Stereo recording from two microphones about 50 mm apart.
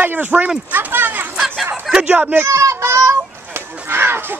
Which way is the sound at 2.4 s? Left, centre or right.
Right.